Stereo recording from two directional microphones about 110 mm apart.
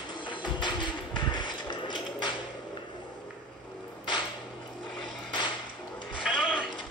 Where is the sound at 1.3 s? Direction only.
45° left (ahead or behind).